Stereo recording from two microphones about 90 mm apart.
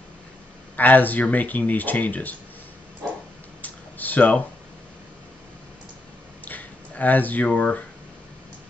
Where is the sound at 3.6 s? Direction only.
20° left (ahead or behind).